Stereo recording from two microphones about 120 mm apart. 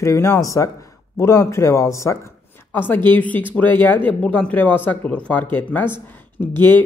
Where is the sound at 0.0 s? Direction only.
25° left (ahead or behind).